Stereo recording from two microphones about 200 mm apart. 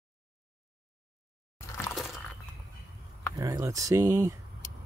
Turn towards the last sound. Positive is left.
turn(degrees=-15)  # may be behind; listen again after turning